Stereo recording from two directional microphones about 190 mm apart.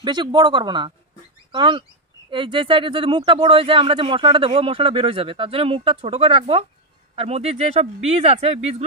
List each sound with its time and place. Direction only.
0.0 s speech: 25° right (ahead or behind)